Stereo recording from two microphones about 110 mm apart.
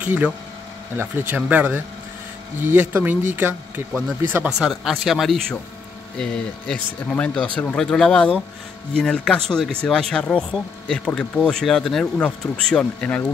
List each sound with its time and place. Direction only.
0.0 s speech: 15° right (ahead or behind)
4.5 s speech: centre (ahead or behind)